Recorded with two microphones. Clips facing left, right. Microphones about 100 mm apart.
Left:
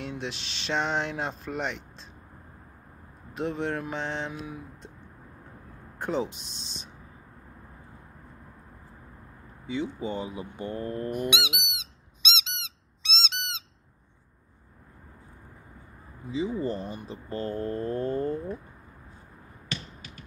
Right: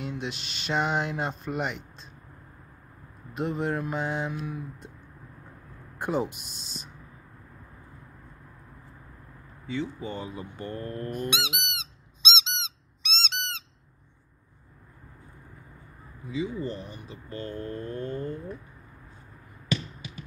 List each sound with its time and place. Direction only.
0.0 s speech: centre (ahead or behind)
3.3 s speech: centre (ahead or behind)
5.9 s speech: 10° right (ahead or behind)
9.7 s speech: 15° left (ahead or behind)
11.8 s squeak: 30° right (ahead or behind)
16.3 s speech: 30° left (ahead or behind)